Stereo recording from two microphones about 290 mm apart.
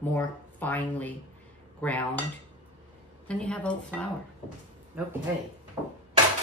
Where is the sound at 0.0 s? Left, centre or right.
Centre.